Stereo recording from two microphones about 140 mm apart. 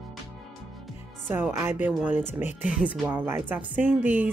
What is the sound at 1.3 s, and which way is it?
Speech, 20° right (ahead or behind).